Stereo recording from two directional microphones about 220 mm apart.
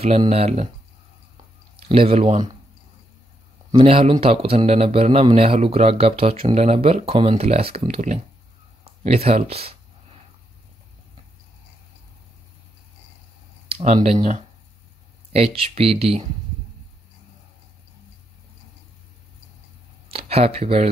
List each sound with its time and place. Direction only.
0.0 s a man's voice: 25° right (ahead or behind)
1.8 s a man's voice: 25° right (ahead or behind)
3.7 s a man's voice: 25° right (ahead or behind)
13.7 s a man's voice: 25° right (ahead or behind)
20.1 s speech: 25° right (ahead or behind)